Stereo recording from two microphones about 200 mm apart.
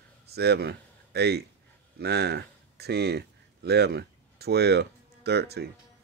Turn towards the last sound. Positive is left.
turn(degrees=-55)  # may be behind; listen again after turning